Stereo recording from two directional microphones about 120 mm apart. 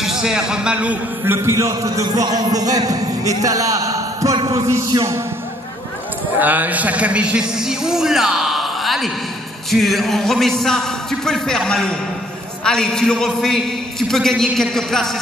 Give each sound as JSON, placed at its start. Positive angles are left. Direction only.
{"t": 0.0, "sound": "a man's voice", "side_deg": -5}
{"t": 6.4, "sound": "a man's voice", "side_deg": -15}